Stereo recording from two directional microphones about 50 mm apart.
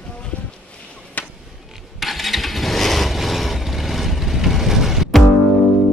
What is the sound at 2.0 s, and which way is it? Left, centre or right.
Vehicle, centre.